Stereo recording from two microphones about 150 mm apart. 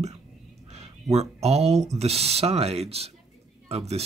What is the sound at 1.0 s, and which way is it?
Speech, 45° right (ahead or behind).